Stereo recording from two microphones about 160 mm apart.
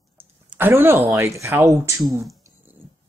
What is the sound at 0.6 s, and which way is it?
Speech, 15° right (ahead or behind).